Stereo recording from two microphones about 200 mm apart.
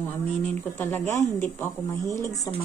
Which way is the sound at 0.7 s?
10° left (ahead or behind).